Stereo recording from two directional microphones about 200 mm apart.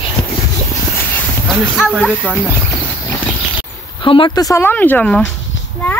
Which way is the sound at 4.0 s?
25° left (ahead or behind).